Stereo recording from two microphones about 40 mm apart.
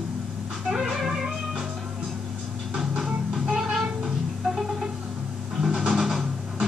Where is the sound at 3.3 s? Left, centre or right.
Centre.